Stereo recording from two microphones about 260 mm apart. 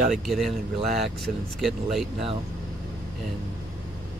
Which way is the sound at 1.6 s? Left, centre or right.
Centre.